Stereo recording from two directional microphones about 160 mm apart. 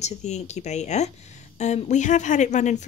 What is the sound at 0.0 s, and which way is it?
A woman's voice, 45° left (ahead or behind).